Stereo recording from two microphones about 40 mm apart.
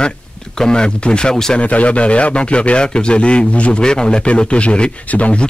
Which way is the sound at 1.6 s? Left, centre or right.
Left.